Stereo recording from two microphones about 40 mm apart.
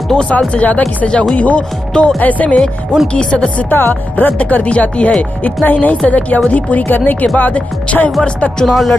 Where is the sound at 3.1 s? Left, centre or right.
Left.